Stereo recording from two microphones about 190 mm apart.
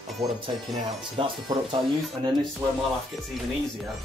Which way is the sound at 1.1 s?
25° right (ahead or behind).